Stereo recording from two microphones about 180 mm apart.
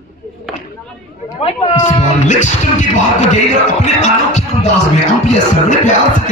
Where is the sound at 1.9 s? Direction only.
45° left (ahead or behind).